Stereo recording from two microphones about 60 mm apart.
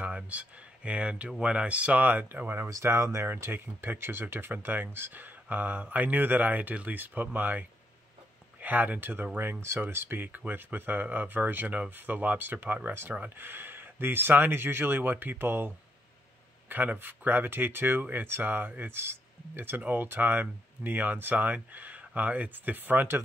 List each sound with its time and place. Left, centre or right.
0.0 s speech: right
2.7 s speech: right
3.3 s speech: right